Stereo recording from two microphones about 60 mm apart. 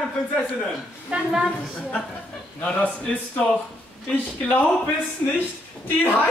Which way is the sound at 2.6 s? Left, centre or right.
Left.